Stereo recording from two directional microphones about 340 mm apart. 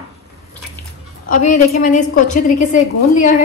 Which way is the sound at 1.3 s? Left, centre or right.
Left.